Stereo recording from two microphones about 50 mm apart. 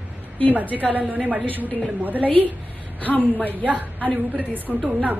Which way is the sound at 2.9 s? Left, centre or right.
Left.